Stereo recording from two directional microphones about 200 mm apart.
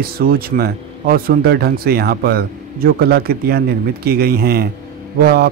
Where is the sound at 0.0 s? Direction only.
50° right (ahead or behind).